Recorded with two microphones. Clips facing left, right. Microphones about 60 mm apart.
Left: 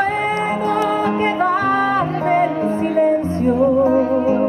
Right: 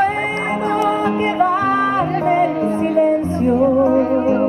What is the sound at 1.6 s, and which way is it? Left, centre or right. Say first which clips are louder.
Music: even; right.